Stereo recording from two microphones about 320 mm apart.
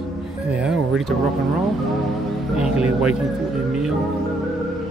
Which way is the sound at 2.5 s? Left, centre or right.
Centre.